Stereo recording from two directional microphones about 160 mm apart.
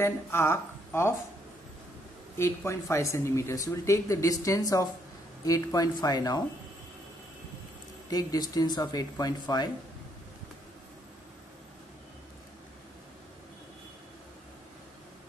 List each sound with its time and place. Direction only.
0.0 s speech: 15° left (ahead or behind)
2.3 s speech: 15° left (ahead or behind)
8.1 s speech: 25° left (ahead or behind)